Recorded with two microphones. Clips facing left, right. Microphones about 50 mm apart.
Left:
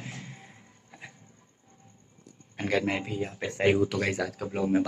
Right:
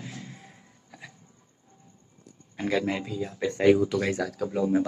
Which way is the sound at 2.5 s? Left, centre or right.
Left.